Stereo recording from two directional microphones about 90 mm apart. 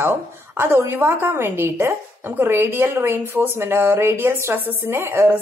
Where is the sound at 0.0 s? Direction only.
25° right (ahead or behind).